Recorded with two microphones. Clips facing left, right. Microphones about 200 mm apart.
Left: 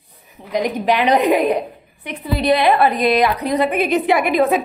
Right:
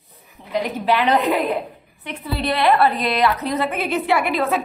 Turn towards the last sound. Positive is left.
turn(degrees=15)  # may be behind; listen again after turning